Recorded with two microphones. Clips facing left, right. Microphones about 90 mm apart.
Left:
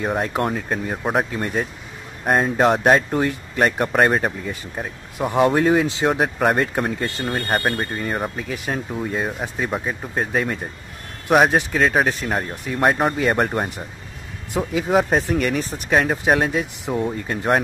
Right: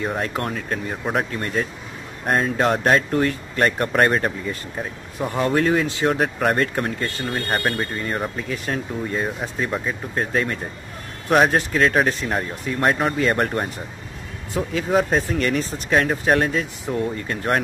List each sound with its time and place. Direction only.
0.4 s speech: 15° left (ahead or behind)